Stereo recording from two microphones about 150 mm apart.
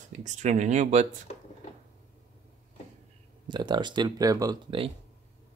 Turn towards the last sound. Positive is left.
turn(degrees=-35)  # may be behind; listen again after turning